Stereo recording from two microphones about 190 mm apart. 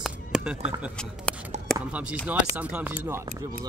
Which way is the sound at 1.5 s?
40° right (ahead or behind).